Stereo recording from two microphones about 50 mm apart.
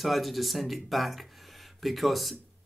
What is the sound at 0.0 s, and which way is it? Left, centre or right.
Speech, centre.